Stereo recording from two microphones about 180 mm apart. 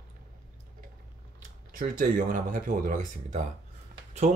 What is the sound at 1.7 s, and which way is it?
Speech, 50° right (ahead or behind).